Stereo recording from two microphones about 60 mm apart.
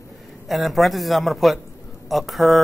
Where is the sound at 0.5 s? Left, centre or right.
Centre.